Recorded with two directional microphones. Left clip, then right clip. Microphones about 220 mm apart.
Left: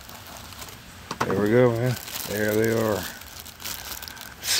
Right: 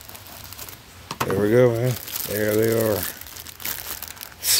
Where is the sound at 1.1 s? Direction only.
40° right (ahead or behind).